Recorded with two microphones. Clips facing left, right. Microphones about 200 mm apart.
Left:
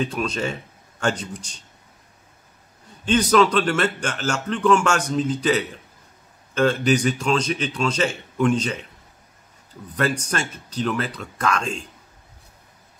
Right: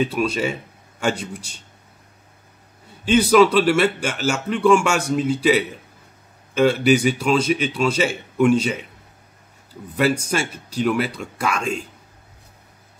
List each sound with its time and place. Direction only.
0.0 s speech: 5° right (ahead or behind)
3.1 s speech: 10° right (ahead or behind)
9.9 s speech: 10° right (ahead or behind)